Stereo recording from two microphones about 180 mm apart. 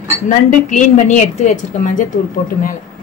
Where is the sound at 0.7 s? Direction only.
45° left (ahead or behind).